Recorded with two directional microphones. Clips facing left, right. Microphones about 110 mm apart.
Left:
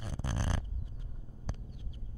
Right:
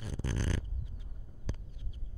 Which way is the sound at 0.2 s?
20° left (ahead or behind).